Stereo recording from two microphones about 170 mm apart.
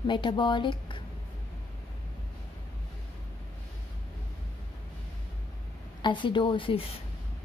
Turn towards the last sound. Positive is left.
turn(degrees=30)  # may be behind; listen again after turning